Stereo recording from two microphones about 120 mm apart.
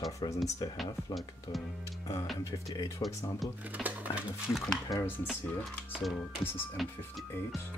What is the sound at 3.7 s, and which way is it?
Speech, 15° right (ahead or behind).